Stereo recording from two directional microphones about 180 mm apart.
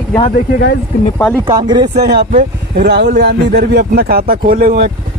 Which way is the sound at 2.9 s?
65° right (ahead or behind).